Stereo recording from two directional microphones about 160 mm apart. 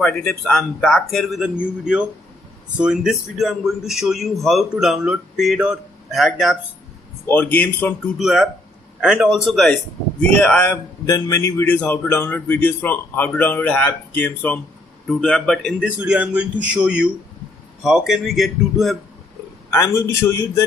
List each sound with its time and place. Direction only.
0.0 s a man's voice: 5° left (ahead or behind)
7.2 s a man's voice: 10° left (ahead or behind)
8.2 s a man's voice: centre (ahead or behind)
11.1 s a man's voice: 20° left (ahead or behind); by 15.9 s centre (ahead or behind)
16.0 s a man's voice: 10° right (ahead or behind)
19.7 s a man's voice: 15° left (ahead or behind)